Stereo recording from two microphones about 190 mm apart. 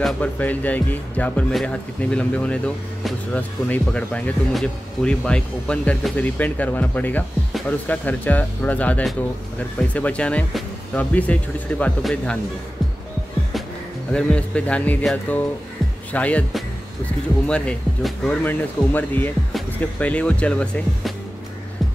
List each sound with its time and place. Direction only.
0.0 s speech: 10° left (ahead or behind)
14.1 s speech: 5° left (ahead or behind)